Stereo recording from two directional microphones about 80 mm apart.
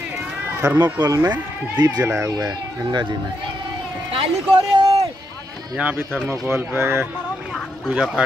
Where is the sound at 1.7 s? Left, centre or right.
Right.